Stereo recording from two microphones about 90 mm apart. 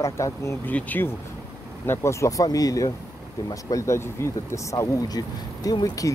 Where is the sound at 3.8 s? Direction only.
30° left (ahead or behind).